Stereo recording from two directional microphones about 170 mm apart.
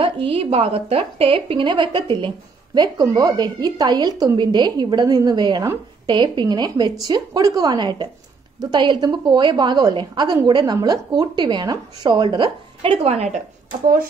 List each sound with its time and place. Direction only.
0.0 s a woman's voice: 35° right (ahead or behind)